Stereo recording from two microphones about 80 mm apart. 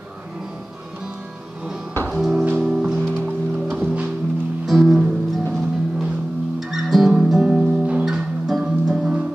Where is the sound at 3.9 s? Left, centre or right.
Centre.